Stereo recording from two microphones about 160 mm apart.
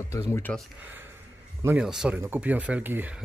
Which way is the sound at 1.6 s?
10° right (ahead or behind).